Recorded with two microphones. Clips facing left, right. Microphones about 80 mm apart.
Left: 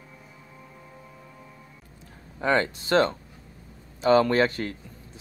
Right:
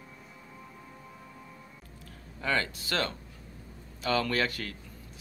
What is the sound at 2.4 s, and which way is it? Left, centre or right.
Speech, left.